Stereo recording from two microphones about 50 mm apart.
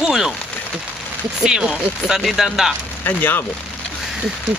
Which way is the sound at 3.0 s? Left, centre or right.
Left.